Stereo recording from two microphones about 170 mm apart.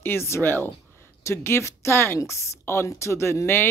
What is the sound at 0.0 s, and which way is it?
Speech, 15° left (ahead or behind).